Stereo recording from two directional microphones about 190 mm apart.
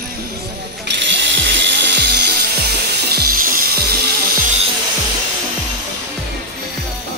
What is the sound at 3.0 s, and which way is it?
Wood, 55° right (ahead or behind).